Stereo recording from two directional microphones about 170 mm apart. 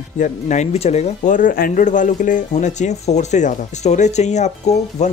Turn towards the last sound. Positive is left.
turn(degrees=40)  # may be behind; listen again after turning